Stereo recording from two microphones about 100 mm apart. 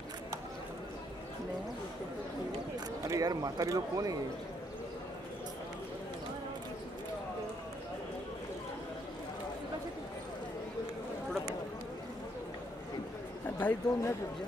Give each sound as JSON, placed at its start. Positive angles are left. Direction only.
{"t": 3.1, "sound": "speech", "side_deg": -35}
{"t": 13.6, "sound": "speech", "side_deg": 15}